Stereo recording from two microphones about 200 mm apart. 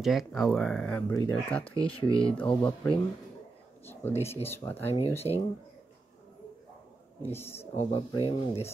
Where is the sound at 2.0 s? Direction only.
25° left (ahead or behind).